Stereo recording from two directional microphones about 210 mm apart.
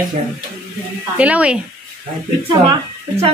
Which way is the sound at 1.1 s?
5° right (ahead or behind).